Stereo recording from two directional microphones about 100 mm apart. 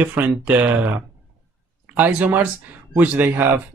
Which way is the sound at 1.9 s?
20° right (ahead or behind).